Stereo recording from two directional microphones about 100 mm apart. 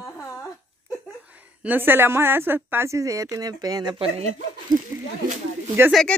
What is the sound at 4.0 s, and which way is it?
Speech, 90° right.